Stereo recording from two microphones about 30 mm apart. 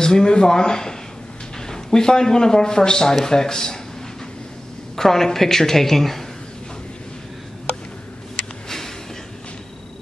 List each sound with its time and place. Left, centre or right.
0.0 s a man's voice: left
4.9 s a woman's voice: centre
8.6 s a sound: centre